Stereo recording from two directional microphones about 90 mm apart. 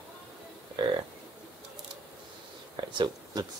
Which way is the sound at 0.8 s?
55° right (ahead or behind).